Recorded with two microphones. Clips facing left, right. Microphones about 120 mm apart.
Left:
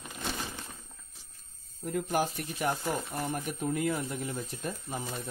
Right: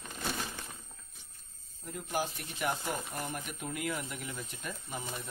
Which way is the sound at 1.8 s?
55° left (ahead or behind).